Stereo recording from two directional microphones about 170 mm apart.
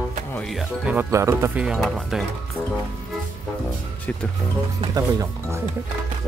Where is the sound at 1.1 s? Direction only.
15° right (ahead or behind).